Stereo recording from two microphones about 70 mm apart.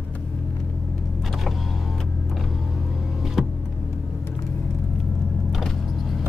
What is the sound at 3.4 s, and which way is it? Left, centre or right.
Vehicle, centre.